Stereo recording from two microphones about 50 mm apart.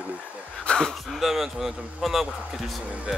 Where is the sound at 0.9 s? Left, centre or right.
Centre.